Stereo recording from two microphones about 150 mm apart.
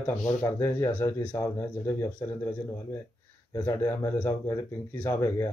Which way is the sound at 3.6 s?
15° left (ahead or behind).